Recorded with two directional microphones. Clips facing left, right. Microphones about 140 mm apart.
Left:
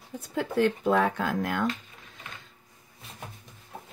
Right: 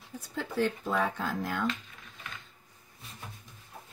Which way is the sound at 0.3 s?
60° left (ahead or behind).